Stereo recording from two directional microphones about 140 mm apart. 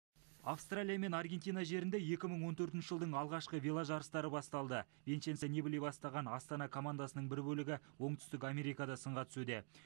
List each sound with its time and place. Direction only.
0.5 s speech: 30° left (ahead or behind)